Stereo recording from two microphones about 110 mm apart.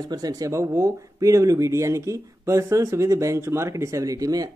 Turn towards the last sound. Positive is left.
turn(degrees=-30)  # may be behind; listen again after turning